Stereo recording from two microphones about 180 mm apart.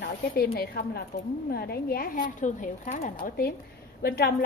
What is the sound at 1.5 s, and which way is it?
A woman's voice, 60° left (ahead or behind).